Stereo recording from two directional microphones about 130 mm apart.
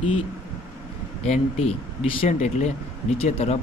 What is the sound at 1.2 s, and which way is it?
Speech, 55° left (ahead or behind).